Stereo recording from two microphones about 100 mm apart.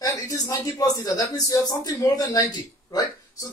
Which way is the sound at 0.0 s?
35° left (ahead or behind).